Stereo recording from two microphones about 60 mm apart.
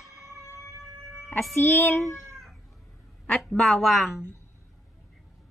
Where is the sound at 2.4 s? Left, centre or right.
Centre.